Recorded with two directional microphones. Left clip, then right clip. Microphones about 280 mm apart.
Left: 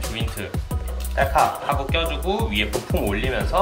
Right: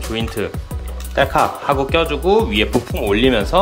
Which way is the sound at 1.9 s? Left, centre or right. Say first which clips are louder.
Right 8 dB; centre.